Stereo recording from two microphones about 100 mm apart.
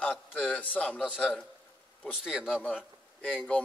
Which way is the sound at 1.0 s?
5° right (ahead or behind).